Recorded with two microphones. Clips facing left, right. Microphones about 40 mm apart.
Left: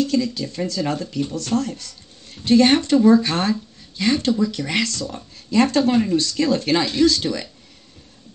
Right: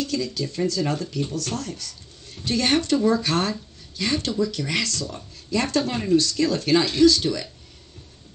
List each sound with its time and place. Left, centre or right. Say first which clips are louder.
0.0 s speech: left 5 dB; left